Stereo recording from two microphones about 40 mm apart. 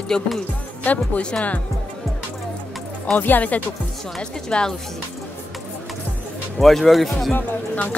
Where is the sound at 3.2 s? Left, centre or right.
Left.